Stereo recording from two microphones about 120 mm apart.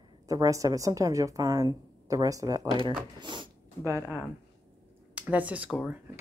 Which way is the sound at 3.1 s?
40° right (ahead or behind).